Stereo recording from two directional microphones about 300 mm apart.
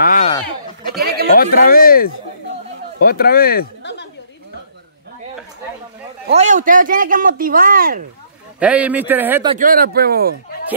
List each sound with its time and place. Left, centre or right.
0.0 s a sound: left
1.0 s a sound: right
1.3 s speech: left
6.2 s speech: right
8.5 s a man's voice: centre
9.5 s speech: right